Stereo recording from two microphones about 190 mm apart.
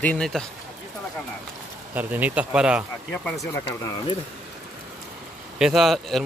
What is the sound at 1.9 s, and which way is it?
Speech, 10° right (ahead or behind).